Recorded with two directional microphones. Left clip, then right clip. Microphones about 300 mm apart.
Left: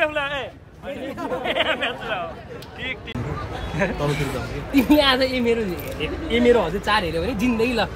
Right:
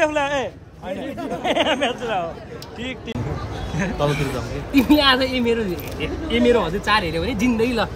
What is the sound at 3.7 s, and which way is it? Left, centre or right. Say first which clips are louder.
A woman's voice: right 1 dB; centre.